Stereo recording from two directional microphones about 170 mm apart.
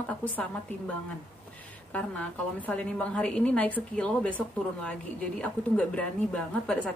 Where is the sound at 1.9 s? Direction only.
10° left (ahead or behind).